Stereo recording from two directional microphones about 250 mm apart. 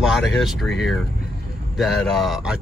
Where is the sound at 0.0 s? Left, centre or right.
Centre.